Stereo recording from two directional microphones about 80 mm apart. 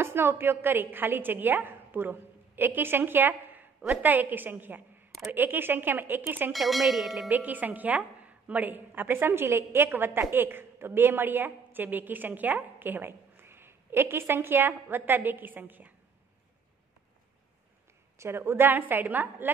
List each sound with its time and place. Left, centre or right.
0.0 s a woman's voice: right
6.5 s speech: centre
7.2 s a woman's voice: right
18.1 s a woman's voice: right